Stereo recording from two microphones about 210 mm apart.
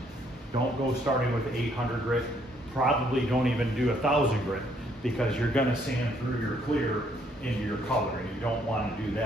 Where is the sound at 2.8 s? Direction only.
Centre (ahead or behind).